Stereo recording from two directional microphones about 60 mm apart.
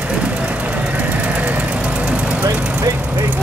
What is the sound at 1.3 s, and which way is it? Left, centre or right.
Vehicle, right.